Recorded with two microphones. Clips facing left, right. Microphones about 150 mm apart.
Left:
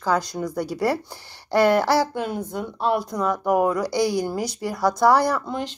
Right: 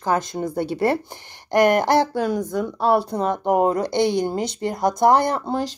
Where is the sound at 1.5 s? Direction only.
15° right (ahead or behind).